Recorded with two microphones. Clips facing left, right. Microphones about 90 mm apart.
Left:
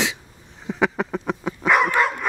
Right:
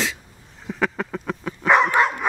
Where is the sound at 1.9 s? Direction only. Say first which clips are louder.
Right 1 dB; 20° right (ahead or behind).